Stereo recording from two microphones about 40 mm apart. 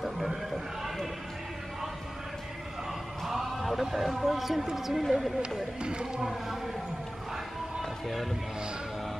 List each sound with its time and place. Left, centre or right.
0.5 s a sound: centre
3.3 s speech: centre
5.8 s speech: right